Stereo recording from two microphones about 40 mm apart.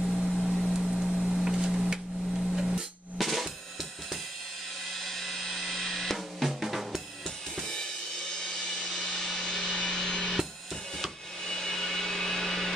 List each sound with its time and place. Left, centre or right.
0.1 s a sound: centre
2.3 s hammer: centre
3.2 s drum kit: centre
4.9 s drum kit: centre
7.6 s drum kit: centre
8.4 s music: centre
11.4 s a sound: centre